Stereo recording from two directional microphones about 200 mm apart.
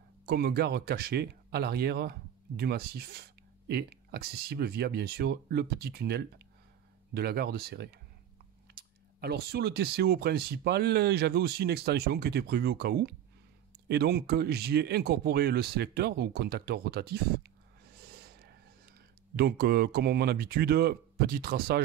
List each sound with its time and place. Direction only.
0.2 s speech: 50° right (ahead or behind)
19.3 s speech: 50° right (ahead or behind)